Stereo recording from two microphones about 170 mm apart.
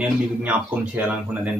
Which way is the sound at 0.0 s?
10° right (ahead or behind).